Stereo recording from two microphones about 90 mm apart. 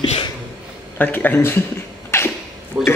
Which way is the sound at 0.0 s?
90° left.